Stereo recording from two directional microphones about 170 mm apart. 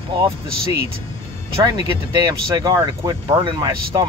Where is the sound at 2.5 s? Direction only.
25° right (ahead or behind).